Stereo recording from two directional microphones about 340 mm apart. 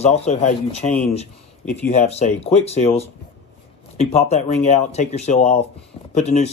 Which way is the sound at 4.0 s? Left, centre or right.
Centre.